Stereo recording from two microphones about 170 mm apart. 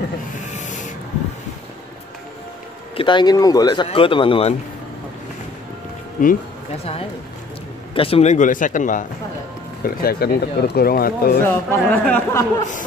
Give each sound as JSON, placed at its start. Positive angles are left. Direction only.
{"t": 0.6, "sound": "a sound", "side_deg": 45}
{"t": 3.0, "sound": "speech", "side_deg": 30}
{"t": 6.2, "sound": "speech", "side_deg": 55}
{"t": 6.8, "sound": "speech", "side_deg": 35}
{"t": 9.8, "sound": "speech", "side_deg": 65}
{"t": 11.4, "sound": "speech", "side_deg": 10}